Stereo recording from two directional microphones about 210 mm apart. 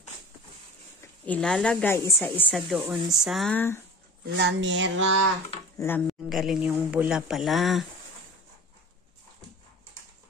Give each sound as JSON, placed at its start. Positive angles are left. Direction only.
{"t": 1.2, "sound": "speech", "side_deg": 5}
{"t": 4.4, "sound": "speech", "side_deg": -55}
{"t": 5.8, "sound": "speech", "side_deg": 10}